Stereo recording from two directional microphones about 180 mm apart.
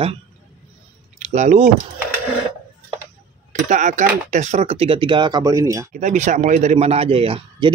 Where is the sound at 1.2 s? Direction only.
40° right (ahead or behind).